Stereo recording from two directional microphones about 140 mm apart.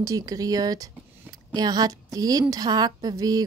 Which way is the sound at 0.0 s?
25° right (ahead or behind).